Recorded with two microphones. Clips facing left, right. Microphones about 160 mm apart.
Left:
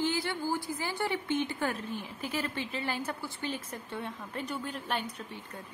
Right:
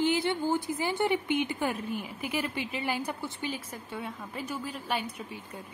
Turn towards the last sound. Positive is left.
turn(degrees=-10)  # may be behind; listen again after turning